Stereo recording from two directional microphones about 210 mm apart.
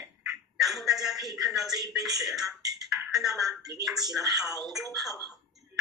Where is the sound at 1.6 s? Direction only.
20° right (ahead or behind).